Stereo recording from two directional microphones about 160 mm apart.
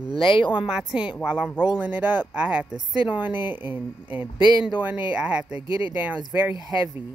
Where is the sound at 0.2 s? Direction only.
30° left (ahead or behind).